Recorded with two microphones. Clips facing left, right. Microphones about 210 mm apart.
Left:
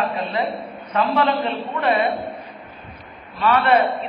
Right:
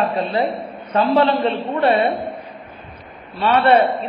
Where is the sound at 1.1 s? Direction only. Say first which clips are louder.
Right 5 dB; 35° right (ahead or behind).